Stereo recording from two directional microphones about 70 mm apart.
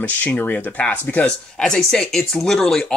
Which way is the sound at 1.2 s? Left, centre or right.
Centre.